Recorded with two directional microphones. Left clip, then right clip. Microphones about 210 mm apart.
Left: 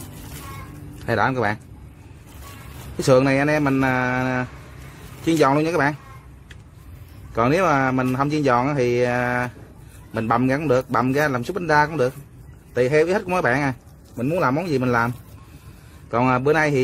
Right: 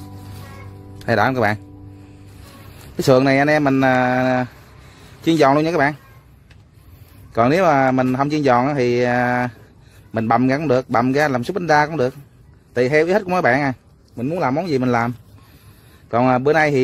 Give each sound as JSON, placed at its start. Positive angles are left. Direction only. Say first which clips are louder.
{"t": 0.9, "sound": "a man's voice", "louder": "right 4 dB", "side_deg": -45}
{"t": 3.0, "sound": "a man's voice", "louder": "right 3 dB", "side_deg": -45}
{"t": 7.3, "sound": "a man's voice", "louder": "right 4 dB", "side_deg": -45}